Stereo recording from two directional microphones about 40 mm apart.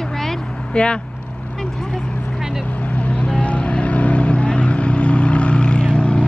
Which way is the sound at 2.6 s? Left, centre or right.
Left.